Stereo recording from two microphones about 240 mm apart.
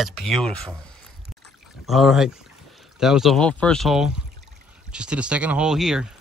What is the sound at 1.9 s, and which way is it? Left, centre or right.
Speech, centre.